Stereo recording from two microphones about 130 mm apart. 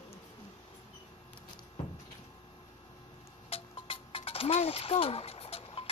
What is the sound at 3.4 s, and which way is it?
Music, 45° left (ahead or behind).